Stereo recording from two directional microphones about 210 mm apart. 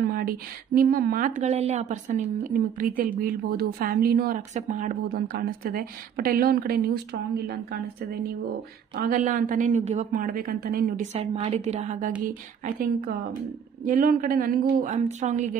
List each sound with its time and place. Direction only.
0.0 s a sound: 45° right (ahead or behind)
0.7 s a woman's voice: 45° right (ahead or behind)
8.9 s a woman's voice: 40° right (ahead or behind)
11.1 s a woman's voice: 25° right (ahead or behind)